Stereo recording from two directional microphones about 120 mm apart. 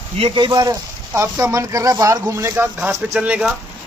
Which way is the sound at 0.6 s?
25° right (ahead or behind).